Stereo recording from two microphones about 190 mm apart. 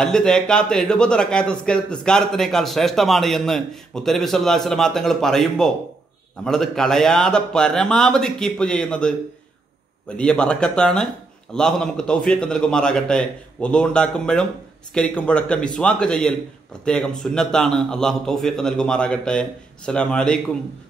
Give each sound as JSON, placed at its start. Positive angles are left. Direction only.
{"t": 0.0, "sound": "speech", "side_deg": 0}